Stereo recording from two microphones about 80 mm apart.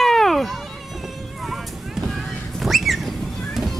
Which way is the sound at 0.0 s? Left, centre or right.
Centre.